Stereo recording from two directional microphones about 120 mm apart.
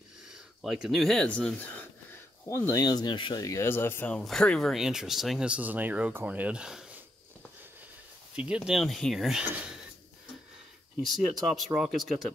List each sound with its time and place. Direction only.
0.6 s speech: 5° right (ahead or behind); by 1.9 s 15° left (ahead or behind)
2.5 s speech: 25° left (ahead or behind); by 3.4 s 40° left (ahead or behind)
3.4 s speech: 20° left (ahead or behind)
4.1 s speech: 5° left (ahead or behind)
8.4 s speech: 10° right (ahead or behind)
11.0 s speech: centre (ahead or behind)